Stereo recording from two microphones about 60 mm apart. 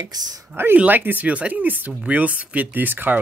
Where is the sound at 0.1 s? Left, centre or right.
Right.